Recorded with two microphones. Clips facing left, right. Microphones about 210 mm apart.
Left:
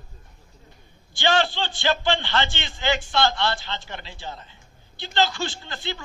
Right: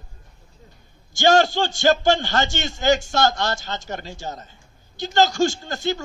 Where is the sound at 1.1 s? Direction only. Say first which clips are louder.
Right 6 dB; 45° right (ahead or behind).